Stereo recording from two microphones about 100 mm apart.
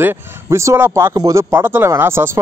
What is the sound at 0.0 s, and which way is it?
Speech, 25° right (ahead or behind).